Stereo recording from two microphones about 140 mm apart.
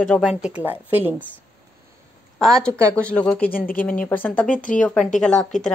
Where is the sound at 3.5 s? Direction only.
90° left.